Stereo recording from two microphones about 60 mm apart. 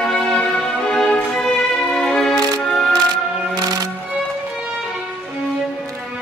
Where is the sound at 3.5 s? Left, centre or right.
Right.